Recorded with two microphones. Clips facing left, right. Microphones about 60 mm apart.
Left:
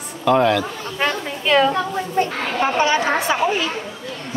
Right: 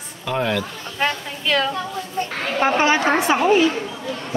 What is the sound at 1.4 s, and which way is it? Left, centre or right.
Speech, centre.